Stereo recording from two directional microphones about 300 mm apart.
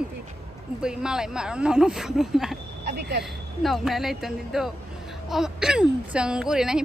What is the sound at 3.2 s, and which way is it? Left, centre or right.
Speech, centre.